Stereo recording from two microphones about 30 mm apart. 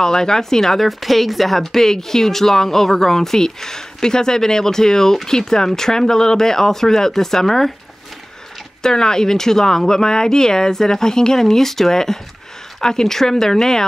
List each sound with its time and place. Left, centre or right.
0.0 s speech: left
0.7 s speech: centre
8.8 s speech: left